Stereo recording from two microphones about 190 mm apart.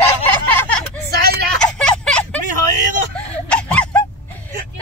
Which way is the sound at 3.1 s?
5° left (ahead or behind).